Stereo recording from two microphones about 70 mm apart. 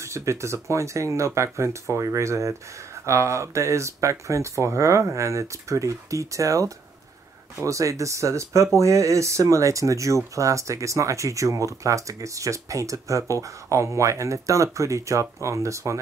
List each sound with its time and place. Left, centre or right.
0.0 s speech: right